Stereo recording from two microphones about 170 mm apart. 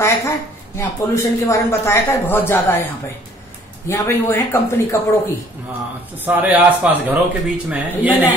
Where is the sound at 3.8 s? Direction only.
15° left (ahead or behind).